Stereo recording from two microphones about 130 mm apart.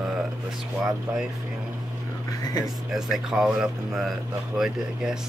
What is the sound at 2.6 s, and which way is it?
Speech, 5° right (ahead or behind).